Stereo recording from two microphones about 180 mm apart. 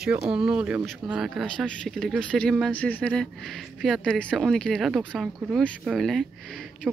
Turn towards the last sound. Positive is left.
turn(degrees=0)  # may be behind; listen again after turning